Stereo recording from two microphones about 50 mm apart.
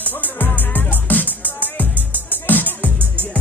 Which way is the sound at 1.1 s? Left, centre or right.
Left.